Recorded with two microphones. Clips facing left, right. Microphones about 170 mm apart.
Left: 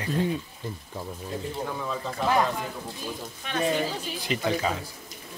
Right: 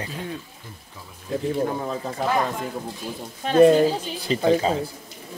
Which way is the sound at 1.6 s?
40° right (ahead or behind).